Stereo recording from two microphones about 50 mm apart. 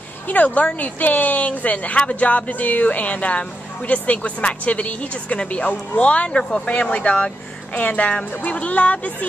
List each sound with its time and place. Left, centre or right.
0.3 s speech: left